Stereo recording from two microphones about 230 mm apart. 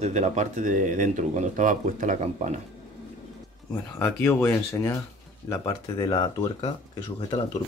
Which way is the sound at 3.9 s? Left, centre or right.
Centre.